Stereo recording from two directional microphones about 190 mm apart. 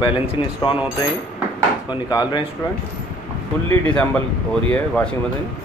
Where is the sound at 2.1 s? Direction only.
20° left (ahead or behind).